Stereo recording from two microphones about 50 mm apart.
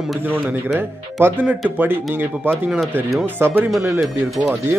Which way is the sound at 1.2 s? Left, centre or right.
Right.